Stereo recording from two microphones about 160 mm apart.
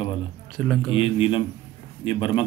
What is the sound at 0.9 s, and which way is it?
Speech, 35° left (ahead or behind).